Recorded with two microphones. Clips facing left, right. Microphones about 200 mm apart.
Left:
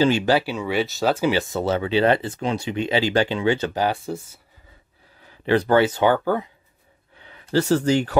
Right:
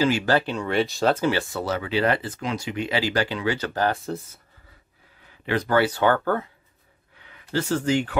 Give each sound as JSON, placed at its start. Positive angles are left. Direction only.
{"t": 0.0, "sound": "speech", "side_deg": 25}
{"t": 0.3, "sound": "speech", "side_deg": 5}
{"t": 1.5, "sound": "speech", "side_deg": 25}
{"t": 3.7, "sound": "speech", "side_deg": 15}
{"t": 5.4, "sound": "speech", "side_deg": 35}
{"t": 7.2, "sound": "speech", "side_deg": 35}